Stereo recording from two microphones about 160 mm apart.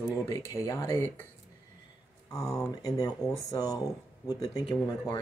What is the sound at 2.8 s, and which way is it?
Speech, 20° left (ahead or behind).